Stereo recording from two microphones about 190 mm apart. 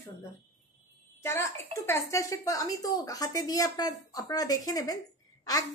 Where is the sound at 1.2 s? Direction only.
15° left (ahead or behind).